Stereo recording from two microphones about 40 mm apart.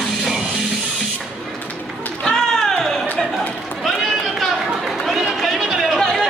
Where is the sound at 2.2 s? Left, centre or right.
Centre.